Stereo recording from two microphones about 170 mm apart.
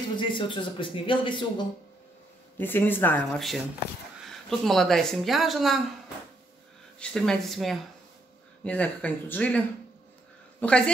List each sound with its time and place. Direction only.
0.2 s speech: 30° left (ahead or behind)
2.5 s speech: 10° left (ahead or behind)
7.0 s speech: 5° left (ahead or behind)
10.6 s speech: 10° left (ahead or behind)